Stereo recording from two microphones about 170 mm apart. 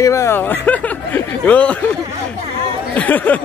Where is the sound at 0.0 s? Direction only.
15° left (ahead or behind).